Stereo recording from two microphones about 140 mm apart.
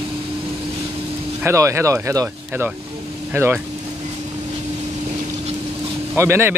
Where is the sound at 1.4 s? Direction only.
20° right (ahead or behind).